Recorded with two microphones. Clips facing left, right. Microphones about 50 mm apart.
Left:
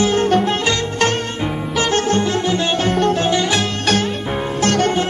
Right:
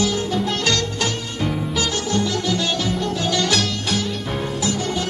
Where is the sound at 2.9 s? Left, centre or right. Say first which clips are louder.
Left 7 dB; left.